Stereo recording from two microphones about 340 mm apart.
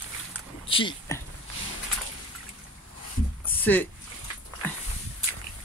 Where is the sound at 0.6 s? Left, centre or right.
Centre.